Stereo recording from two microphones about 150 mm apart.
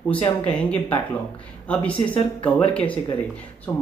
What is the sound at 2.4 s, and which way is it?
Speech, 10° left (ahead or behind).